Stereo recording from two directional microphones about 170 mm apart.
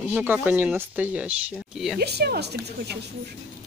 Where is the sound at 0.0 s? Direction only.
10° right (ahead or behind).